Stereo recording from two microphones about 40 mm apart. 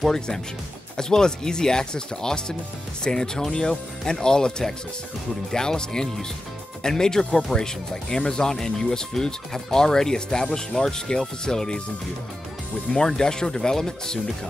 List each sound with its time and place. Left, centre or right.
0.9 s speech: centre
12.9 s speech: centre